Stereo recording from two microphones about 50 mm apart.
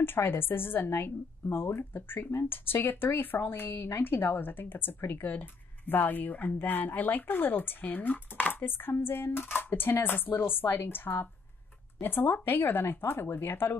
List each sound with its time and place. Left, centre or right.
0.0 s speech: left